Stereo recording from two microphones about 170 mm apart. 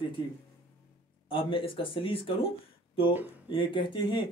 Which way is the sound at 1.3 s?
30° left (ahead or behind).